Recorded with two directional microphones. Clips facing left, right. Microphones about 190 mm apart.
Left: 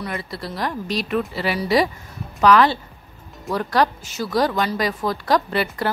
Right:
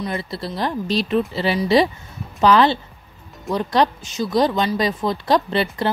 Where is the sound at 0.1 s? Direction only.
25° right (ahead or behind).